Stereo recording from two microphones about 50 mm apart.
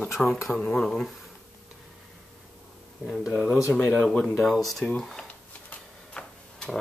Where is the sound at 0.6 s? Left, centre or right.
Left.